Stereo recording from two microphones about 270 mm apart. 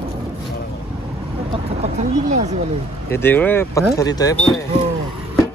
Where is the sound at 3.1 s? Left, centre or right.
Centre.